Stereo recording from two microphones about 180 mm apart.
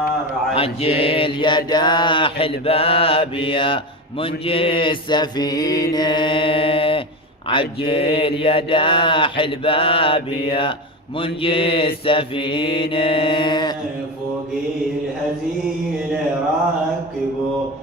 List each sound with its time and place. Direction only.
0.6 s mantra: 30° left (ahead or behind)